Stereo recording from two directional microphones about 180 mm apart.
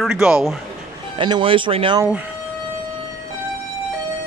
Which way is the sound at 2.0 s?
10° right (ahead or behind).